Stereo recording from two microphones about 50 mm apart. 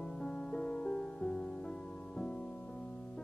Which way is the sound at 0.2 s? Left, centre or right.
Centre.